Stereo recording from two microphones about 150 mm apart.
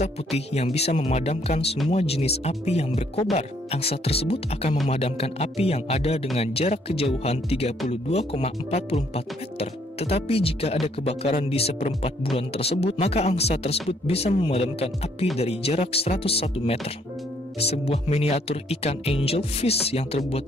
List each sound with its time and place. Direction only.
0.0 s speech: 45° left (ahead or behind)